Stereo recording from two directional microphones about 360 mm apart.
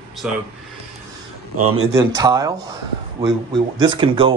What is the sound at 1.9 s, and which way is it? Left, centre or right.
Speech, centre.